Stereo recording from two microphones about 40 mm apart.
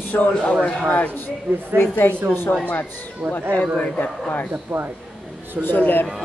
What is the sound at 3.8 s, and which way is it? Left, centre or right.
Speech, left.